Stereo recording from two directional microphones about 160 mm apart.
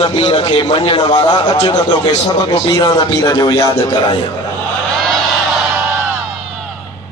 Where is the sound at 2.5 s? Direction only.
25° left (ahead or behind).